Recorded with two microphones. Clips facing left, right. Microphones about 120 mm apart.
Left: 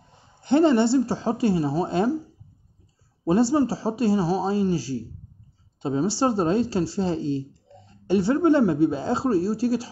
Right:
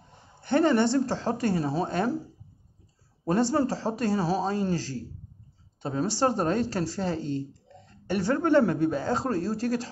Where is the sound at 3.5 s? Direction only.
10° left (ahead or behind).